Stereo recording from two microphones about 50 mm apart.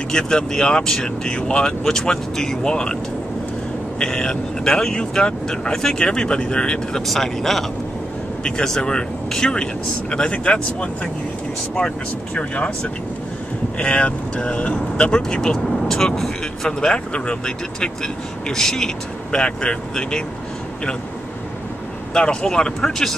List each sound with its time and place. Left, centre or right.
0.1 s speech: centre
4.0 s speech: centre
7.1 s speech: centre
8.5 s speech: centre
12.4 s speech: left
22.1 s speech: centre